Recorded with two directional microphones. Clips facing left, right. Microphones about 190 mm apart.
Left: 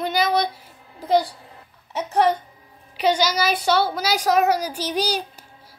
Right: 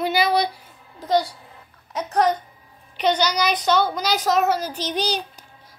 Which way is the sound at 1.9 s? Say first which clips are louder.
Left 1 dB; 5° left (ahead or behind).